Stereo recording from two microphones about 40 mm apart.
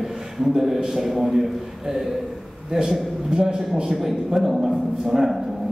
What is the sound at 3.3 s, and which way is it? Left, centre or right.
Speech, centre.